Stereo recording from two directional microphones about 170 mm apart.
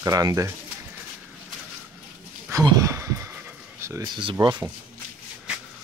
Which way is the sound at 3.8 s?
20° right (ahead or behind).